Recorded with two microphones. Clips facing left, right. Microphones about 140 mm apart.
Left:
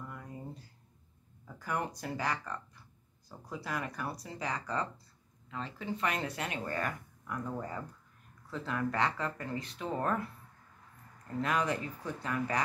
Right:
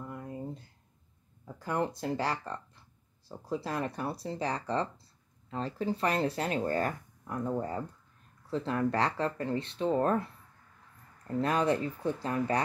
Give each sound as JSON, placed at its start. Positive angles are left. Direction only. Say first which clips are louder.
{"t": 0.0, "sound": "a sound", "louder": "right 5 dB", "side_deg": -25}
{"t": 1.6, "sound": "speech", "louder": "right 4 dB", "side_deg": -25}
{"t": 11.4, "sound": "speech", "louder": "right 4 dB", "side_deg": -30}